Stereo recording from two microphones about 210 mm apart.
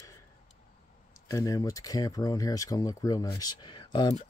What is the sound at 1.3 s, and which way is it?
Speech, 15° left (ahead or behind).